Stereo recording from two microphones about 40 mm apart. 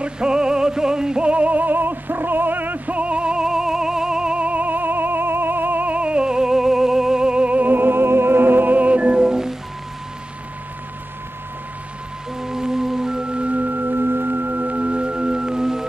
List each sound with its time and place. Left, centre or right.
0.0 s music: centre
4.5 s music: right
5.9 s music: right
7.5 s music: right
9.2 s music: centre
12.4 s music: centre
13.5 s music: right; by 15.9 s centre